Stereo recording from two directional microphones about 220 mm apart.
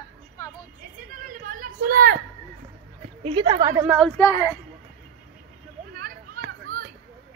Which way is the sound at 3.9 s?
5° left (ahead or behind).